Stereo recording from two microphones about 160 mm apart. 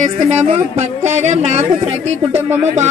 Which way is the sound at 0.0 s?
45° right (ahead or behind).